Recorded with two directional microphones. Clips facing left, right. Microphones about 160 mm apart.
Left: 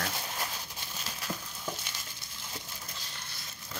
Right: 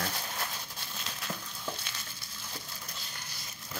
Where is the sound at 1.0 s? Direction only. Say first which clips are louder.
Left 1 dB; 5° left (ahead or behind).